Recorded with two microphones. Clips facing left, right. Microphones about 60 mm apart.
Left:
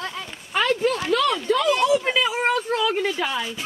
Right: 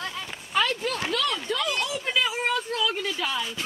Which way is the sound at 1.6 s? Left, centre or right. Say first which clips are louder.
Left 9 dB; left.